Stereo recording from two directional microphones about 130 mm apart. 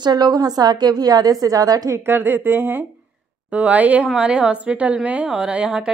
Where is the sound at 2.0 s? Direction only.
15° right (ahead or behind).